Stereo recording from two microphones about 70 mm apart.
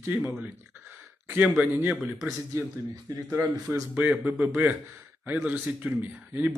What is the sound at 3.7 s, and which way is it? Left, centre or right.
Speech, right.